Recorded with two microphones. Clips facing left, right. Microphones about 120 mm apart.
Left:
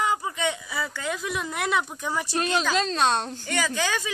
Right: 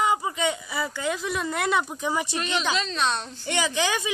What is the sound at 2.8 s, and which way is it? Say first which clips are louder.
Speech: left 4 dB; 45° left (ahead or behind).